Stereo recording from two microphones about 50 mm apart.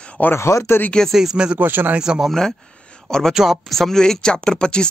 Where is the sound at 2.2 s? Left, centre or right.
Centre.